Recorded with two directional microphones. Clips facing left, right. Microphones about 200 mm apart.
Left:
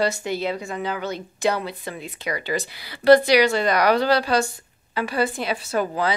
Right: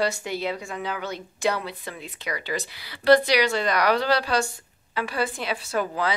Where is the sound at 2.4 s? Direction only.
50° left (ahead or behind).